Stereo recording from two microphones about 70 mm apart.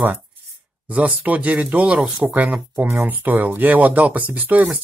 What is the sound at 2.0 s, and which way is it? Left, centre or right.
Speech, centre.